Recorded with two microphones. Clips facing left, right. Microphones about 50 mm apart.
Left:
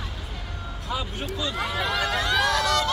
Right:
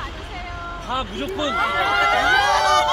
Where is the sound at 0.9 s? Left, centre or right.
Right.